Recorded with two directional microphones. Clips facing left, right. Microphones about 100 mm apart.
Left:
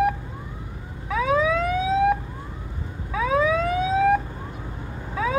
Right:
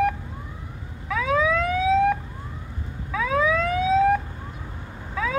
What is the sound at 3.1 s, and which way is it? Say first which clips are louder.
Emergency vehicle: left 2 dB; 25° left (ahead or behind).